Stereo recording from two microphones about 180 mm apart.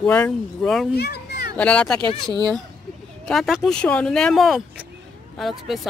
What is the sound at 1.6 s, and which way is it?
Speech, 5° left (ahead or behind).